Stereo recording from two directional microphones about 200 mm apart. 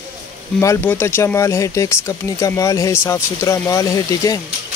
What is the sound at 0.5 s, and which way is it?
Speech, 10° left (ahead or behind).